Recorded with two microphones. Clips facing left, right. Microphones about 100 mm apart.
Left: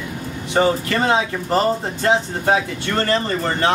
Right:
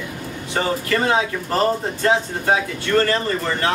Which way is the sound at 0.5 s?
25° left (ahead or behind).